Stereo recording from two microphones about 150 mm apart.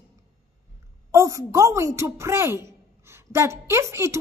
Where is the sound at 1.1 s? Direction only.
20° right (ahead or behind).